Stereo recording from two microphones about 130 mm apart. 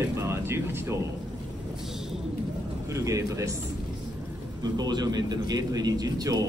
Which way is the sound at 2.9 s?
25° right (ahead or behind).